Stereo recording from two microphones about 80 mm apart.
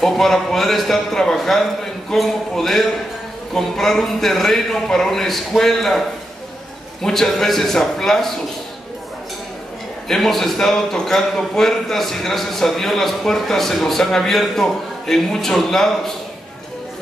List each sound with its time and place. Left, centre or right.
0.0 s a man's voice: centre
10.0 s a man's voice: centre